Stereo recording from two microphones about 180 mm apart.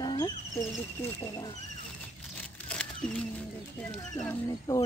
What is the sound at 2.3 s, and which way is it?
Crumpling, 5° left (ahead or behind).